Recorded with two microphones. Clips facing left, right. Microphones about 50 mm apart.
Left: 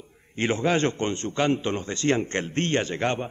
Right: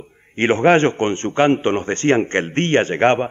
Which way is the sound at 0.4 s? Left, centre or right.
Right.